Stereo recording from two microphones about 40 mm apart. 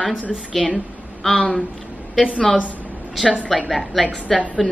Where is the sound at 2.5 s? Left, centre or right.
Left.